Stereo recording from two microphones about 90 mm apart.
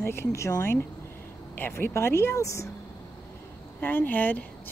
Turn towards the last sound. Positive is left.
turn(degrees=20)  # may be behind; listen again after turning